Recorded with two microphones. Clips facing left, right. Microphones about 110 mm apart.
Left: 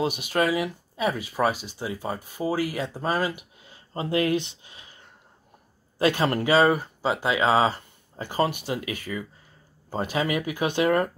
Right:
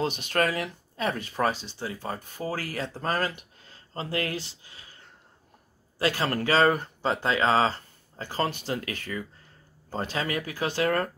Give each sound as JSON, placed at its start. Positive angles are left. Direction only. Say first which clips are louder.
{"t": 0.0, "sound": "speech", "louder": "left 2 dB", "side_deg": 10}